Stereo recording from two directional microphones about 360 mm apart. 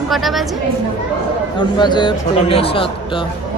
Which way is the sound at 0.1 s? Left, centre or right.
Centre.